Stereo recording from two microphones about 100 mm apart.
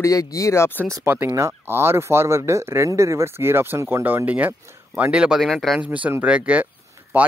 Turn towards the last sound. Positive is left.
turn(degrees=-15)  # may be behind; listen again after turning